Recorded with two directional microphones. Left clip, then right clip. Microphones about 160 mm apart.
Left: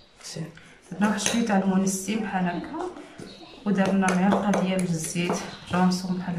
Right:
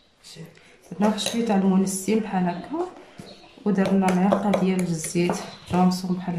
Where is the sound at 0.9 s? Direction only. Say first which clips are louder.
Right 1 dB; 30° right (ahead or behind).